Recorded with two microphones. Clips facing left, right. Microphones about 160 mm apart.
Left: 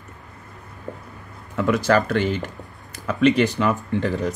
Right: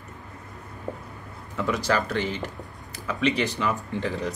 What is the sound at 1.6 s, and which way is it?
Speech, 55° left (ahead or behind).